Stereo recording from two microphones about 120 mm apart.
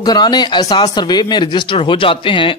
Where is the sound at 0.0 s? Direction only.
35° left (ahead or behind).